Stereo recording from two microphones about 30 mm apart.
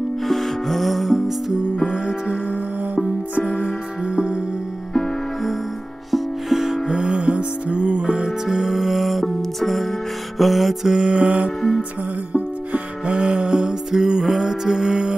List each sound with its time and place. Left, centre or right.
0.3 s music: centre
1.9 s music: centre
6.1 s music: centre
6.9 s music: right
8.5 s music: centre
11.1 s music: right